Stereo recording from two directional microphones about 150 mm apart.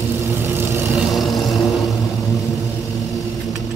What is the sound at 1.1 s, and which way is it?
Vehicle, centre (ahead or behind).